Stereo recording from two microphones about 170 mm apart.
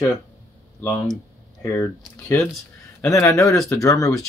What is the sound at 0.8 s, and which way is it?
Speech, 5° left (ahead or behind).